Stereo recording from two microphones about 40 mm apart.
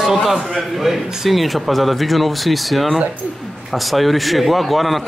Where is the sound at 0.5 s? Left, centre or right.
Centre.